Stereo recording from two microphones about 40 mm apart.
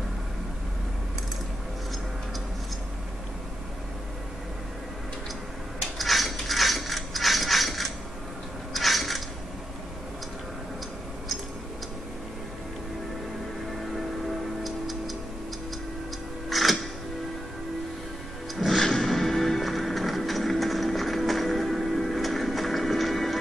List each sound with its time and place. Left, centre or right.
5.9 s mechanisms: centre
8.7 s a sound: centre
14.2 s music: centre
16.4 s music: centre
18.8 s music: centre